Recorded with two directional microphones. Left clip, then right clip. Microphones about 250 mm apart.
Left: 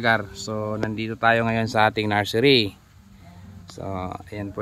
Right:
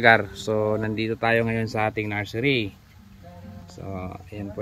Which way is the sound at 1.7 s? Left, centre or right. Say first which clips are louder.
Left 6 dB; centre.